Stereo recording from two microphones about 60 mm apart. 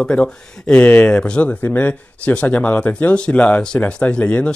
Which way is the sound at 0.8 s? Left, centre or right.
Left.